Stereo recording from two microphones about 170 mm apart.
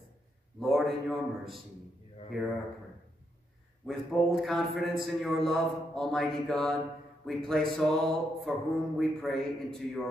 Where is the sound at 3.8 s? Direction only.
Centre (ahead or behind).